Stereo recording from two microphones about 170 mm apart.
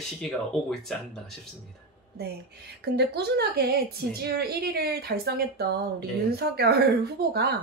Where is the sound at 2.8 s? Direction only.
70° right (ahead or behind).